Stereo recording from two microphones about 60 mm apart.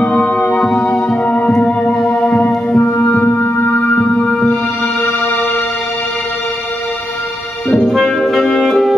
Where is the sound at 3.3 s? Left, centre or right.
Left.